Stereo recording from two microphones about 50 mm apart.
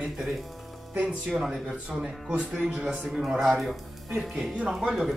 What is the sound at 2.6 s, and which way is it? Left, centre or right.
Speech, centre.